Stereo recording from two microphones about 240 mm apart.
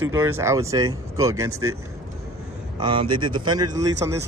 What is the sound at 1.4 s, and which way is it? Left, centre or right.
Speech, right.